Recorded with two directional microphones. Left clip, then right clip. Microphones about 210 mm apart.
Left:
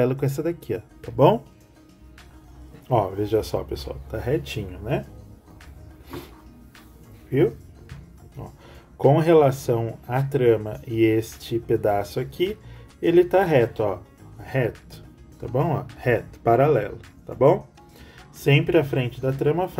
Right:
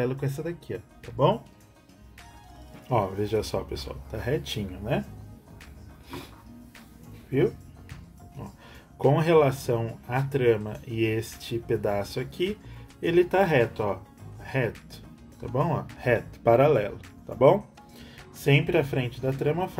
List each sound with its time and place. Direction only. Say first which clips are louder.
0.0 s speech: left 7 dB; 30° left (ahead or behind)
3.2 s speech: left 4 dB; 15° left (ahead or behind)
8.4 s speech: left 3 dB; 15° left (ahead or behind)